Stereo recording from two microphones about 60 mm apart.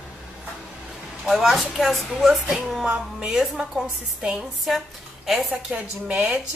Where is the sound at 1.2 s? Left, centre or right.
Centre.